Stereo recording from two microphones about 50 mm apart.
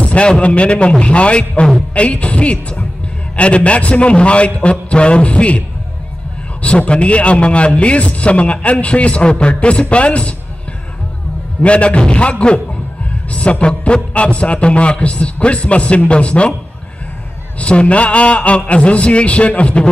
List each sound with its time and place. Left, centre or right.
0.0 s a man's voice: centre
6.6 s a man's voice: left
11.6 s a man's voice: left
17.6 s a man's voice: left